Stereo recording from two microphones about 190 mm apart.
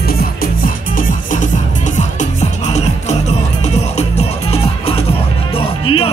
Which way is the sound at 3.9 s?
35° left (ahead or behind).